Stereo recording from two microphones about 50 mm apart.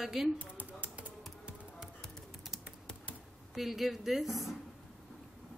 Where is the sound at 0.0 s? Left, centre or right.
Centre.